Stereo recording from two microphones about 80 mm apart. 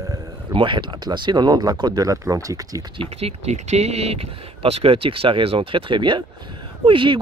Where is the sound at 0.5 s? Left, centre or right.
Right.